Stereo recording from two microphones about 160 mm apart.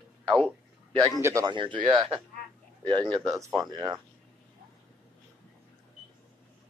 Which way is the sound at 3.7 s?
25° right (ahead or behind).